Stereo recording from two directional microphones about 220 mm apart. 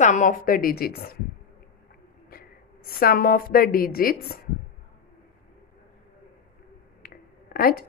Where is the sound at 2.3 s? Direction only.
40° left (ahead or behind).